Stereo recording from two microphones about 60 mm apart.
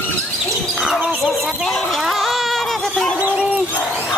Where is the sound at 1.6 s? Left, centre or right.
Centre.